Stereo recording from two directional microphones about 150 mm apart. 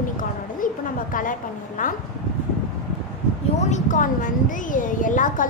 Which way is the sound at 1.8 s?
60° left (ahead or behind).